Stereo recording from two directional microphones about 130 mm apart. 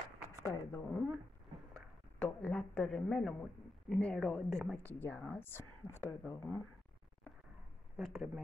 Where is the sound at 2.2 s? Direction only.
10° left (ahead or behind).